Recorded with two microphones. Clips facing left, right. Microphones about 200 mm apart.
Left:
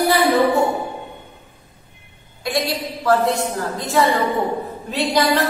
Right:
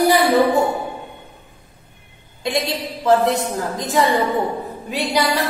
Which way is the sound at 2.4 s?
20° right (ahead or behind).